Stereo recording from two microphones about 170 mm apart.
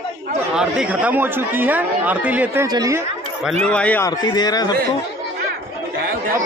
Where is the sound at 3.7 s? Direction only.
10° left (ahead or behind).